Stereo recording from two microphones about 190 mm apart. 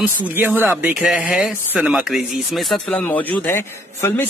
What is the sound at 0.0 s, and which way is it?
Speech, 10° right (ahead or behind).